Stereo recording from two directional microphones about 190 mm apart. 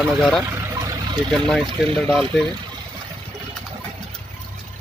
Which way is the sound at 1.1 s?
5° left (ahead or behind).